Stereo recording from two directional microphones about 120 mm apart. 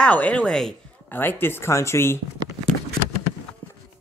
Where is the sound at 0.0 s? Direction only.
10° left (ahead or behind).